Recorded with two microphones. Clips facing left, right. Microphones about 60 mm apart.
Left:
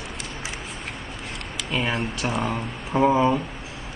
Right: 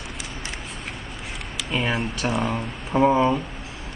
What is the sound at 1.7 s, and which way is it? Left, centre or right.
Speech, centre.